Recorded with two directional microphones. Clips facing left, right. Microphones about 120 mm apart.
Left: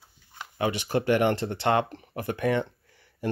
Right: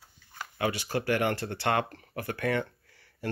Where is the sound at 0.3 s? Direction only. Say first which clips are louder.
Left 3 dB; 20° left (ahead or behind).